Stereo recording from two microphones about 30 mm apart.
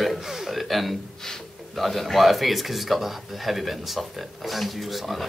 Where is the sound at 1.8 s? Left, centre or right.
Centre.